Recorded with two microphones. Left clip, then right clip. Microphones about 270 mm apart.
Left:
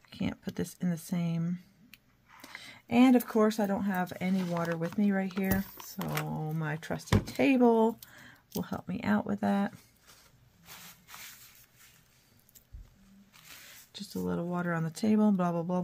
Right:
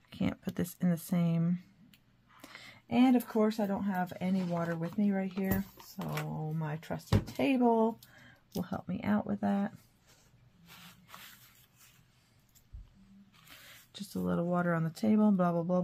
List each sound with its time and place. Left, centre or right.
0.1 s speech: centre
2.4 s a sound: centre
2.9 s speech: centre
13.9 s speech: centre